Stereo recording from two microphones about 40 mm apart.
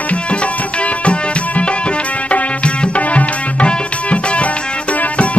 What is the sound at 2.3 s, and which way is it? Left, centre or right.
Tabla, left.